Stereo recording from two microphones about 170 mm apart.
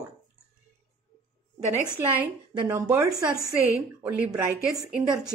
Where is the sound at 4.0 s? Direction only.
10° right (ahead or behind).